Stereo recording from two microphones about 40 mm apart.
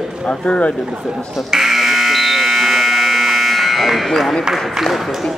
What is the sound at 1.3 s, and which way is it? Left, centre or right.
Electric shaver, centre.